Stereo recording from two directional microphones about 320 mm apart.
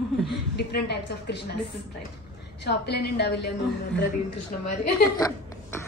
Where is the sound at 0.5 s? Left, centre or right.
Left.